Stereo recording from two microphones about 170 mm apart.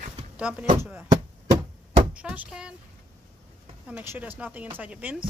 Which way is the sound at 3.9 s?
10° right (ahead or behind).